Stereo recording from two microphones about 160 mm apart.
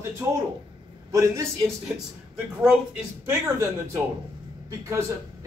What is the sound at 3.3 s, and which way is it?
A woman's voice, 15° right (ahead or behind).